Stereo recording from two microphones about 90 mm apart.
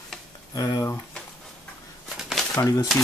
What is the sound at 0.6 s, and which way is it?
Speech, 40° left (ahead or behind).